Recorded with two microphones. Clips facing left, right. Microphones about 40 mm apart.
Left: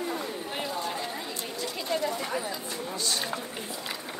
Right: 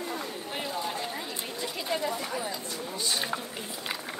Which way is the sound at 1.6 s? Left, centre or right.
Centre.